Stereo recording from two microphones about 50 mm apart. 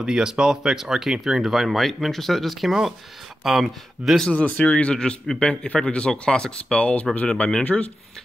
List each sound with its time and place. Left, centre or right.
0.0 s speech: centre
4.2 s speech: left
7.6 s speech: left